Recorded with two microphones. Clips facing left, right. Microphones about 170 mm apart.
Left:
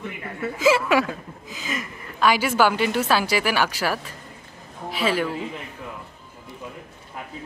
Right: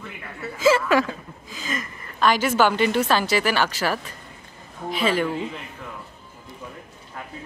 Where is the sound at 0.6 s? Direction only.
10° left (ahead or behind).